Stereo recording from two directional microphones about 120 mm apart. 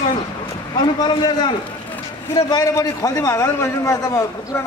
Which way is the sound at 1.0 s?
40° left (ahead or behind).